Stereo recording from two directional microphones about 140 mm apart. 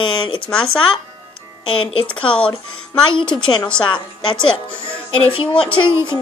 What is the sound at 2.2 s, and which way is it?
Speech, 10° left (ahead or behind).